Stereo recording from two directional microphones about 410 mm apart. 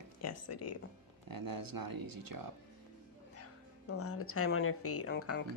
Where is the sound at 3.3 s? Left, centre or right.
Left.